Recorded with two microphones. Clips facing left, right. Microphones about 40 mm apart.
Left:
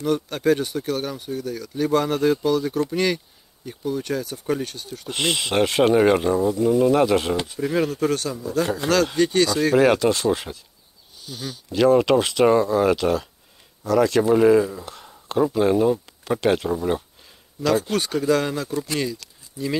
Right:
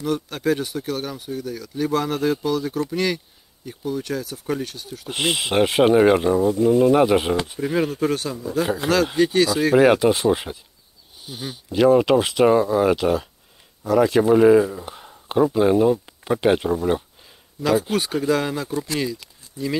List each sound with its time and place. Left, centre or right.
0.0 s speech: centre
6.5 s speech: right
6.8 s speech: centre
19.2 s a sound: right